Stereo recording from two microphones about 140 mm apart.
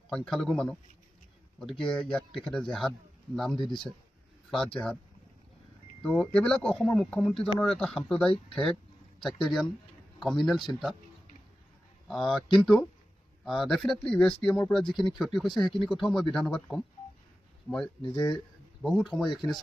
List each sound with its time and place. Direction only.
0.1 s speech: 5° left (ahead or behind)
6.0 s speech: 5° left (ahead or behind)
12.1 s speech: centre (ahead or behind)